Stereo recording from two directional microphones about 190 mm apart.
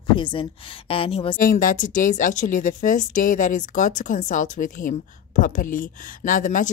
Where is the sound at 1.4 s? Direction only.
45° left (ahead or behind).